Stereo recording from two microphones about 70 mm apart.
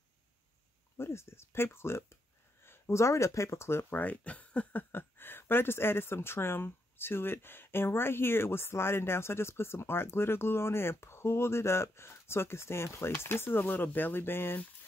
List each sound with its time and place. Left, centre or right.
0.9 s speech: left
4.0 s speech: left
4.9 s speech: left